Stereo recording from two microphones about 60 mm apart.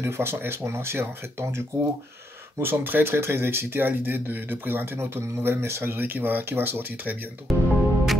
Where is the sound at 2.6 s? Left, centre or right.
Right.